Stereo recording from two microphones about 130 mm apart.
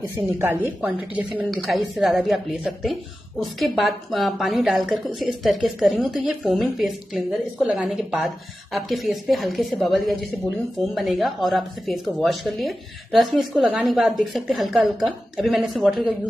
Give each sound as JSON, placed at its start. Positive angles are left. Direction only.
{"t": 0.1, "sound": "a woman's voice", "side_deg": -15}